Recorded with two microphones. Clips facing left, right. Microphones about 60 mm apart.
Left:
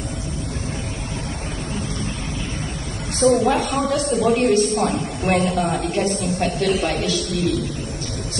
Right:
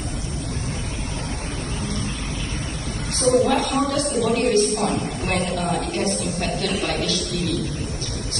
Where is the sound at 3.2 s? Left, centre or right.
Left.